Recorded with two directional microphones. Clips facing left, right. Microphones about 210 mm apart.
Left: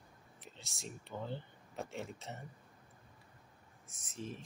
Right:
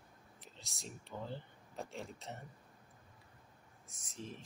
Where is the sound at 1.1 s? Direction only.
Centre (ahead or behind).